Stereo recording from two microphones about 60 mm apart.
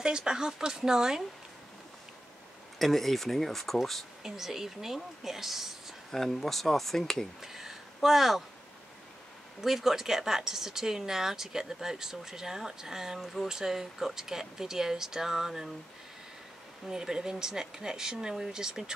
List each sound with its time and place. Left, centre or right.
0.0 s speech: centre
2.8 s speech: centre
6.1 s speech: centre
7.4 s a sound: centre
9.6 s speech: centre
16.8 s speech: centre